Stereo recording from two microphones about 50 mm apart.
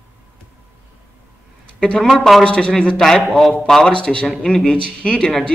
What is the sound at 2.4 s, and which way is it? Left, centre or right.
Speech, centre.